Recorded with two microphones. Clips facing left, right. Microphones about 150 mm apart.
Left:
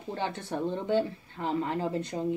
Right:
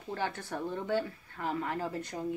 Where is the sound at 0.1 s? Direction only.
25° left (ahead or behind).